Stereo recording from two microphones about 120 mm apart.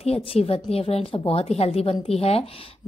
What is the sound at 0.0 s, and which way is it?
A woman's voice, 60° left (ahead or behind).